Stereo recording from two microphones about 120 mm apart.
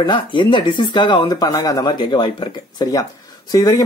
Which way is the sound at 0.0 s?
40° left (ahead or behind).